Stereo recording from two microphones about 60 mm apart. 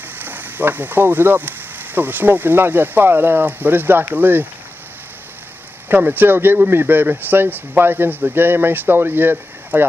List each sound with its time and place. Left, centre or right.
0.2 s speech: right
5.9 s speech: right